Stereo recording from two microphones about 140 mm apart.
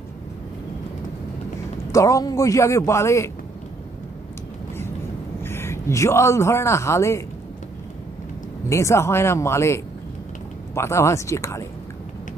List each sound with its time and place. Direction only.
1.9 s a man's voice: 25° left (ahead or behind)
5.4 s a man's voice: 15° left (ahead or behind)
8.6 s a man's voice: 20° left (ahead or behind)